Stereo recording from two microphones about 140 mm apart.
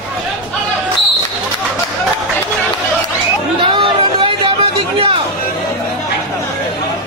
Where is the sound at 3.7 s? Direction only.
35° right (ahead or behind).